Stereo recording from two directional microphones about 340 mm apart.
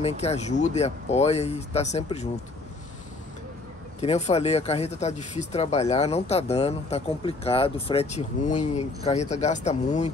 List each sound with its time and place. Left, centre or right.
0.0 s speech: centre
4.0 s speech: centre